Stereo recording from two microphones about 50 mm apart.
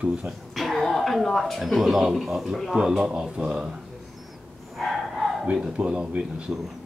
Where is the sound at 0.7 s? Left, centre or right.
Centre.